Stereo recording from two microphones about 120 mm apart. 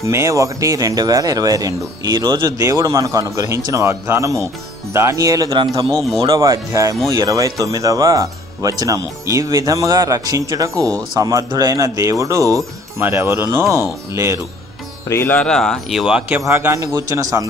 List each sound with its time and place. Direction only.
0.0 s speech: 25° right (ahead or behind)
5.9 s speech: centre (ahead or behind)
6.3 s speech: 30° right (ahead or behind)
15.0 s music: 20° left (ahead or behind)
15.3 s speech: 5° left (ahead or behind)
16.4 s speech: 20° right (ahead or behind)